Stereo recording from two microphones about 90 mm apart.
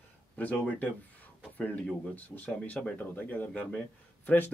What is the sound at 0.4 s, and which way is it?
Speech, 15° left (ahead or behind).